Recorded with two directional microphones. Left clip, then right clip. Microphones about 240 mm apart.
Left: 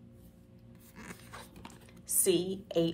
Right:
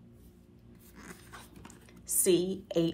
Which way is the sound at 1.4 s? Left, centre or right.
Left.